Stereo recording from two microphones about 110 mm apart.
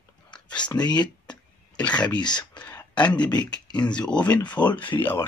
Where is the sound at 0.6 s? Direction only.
40° left (ahead or behind).